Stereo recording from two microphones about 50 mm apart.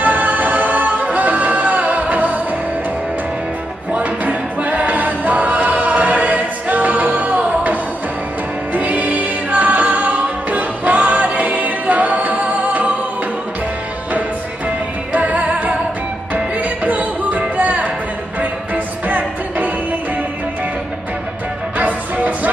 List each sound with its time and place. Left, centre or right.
0.0 s music: right
3.9 s music: right
15.1 s music: right
19.0 s music: right
21.7 s music: right